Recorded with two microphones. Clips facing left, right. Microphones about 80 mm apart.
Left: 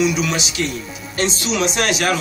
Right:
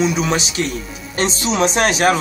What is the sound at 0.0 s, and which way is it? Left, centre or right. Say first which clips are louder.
Speech: right 1 dB; right.